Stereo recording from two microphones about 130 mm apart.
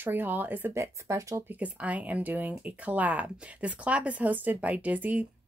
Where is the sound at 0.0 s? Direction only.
15° right (ahead or behind).